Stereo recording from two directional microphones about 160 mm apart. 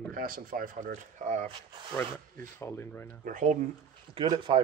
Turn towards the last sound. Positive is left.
turn(degrees=-30)  # may be behind; listen again after turning